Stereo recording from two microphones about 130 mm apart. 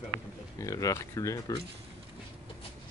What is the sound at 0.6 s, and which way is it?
Speech, 25° left (ahead or behind).